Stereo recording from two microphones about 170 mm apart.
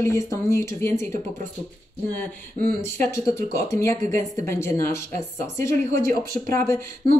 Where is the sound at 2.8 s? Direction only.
15° left (ahead or behind).